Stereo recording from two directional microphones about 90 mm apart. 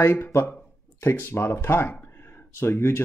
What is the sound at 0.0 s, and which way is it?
Speech, 30° left (ahead or behind).